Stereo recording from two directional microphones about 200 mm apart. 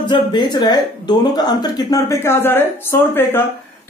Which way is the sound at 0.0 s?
20° left (ahead or behind).